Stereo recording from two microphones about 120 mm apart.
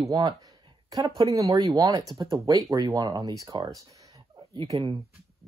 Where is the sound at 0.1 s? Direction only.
35° right (ahead or behind).